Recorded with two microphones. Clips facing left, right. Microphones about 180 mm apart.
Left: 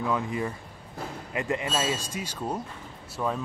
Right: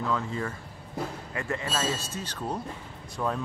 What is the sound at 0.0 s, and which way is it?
Speech, 15° left (ahead or behind).